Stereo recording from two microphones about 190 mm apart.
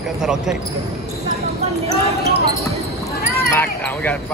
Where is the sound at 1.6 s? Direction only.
35° right (ahead or behind).